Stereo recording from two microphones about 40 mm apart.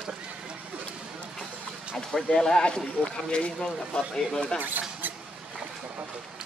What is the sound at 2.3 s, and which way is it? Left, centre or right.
Speech, centre.